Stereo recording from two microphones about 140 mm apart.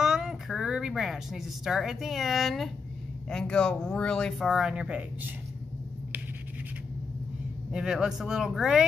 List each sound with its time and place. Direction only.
0.0 s a sound: 5° right (ahead or behind)
3.3 s speech: 5° left (ahead or behind)
7.7 s speech: 5° right (ahead or behind)